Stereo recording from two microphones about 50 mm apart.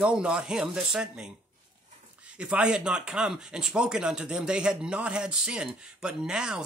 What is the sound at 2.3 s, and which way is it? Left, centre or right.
Speech, right.